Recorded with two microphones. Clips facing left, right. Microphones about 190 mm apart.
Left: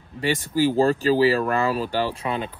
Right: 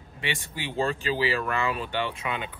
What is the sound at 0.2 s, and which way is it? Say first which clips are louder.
Speech: left 12 dB; 40° left (ahead or behind).